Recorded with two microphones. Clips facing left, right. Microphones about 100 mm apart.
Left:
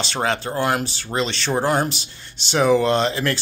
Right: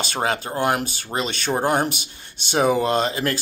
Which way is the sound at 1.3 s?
50° right (ahead or behind).